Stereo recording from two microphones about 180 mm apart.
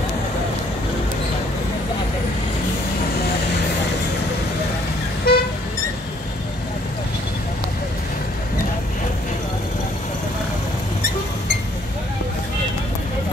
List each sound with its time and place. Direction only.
5.3 s vehicle: 60° left (ahead or behind)